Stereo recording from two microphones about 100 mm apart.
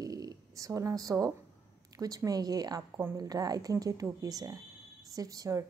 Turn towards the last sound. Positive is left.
turn(degrees=-35)  # may be behind; listen again after turning